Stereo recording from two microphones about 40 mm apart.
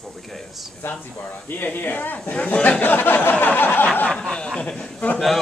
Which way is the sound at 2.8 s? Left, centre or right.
Left.